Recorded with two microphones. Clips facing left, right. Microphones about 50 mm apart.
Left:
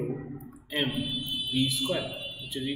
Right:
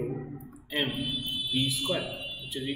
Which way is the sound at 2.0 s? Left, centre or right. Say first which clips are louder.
Even; right.